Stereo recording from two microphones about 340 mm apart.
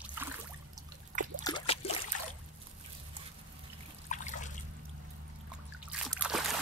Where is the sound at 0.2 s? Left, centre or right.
Centre.